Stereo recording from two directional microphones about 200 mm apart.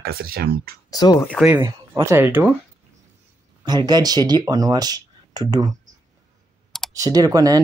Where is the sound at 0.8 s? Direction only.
20° left (ahead or behind).